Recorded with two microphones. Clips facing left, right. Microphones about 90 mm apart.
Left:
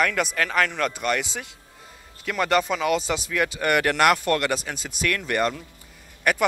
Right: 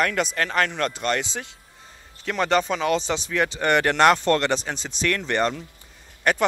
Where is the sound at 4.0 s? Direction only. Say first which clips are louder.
Right 4 dB; 30° right (ahead or behind).